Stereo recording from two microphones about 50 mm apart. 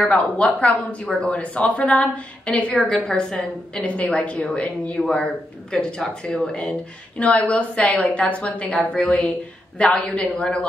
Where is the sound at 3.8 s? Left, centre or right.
Left.